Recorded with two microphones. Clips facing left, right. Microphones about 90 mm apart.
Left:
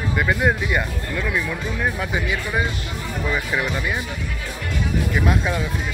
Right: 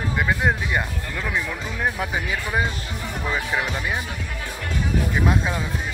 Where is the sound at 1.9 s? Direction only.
30° right (ahead or behind).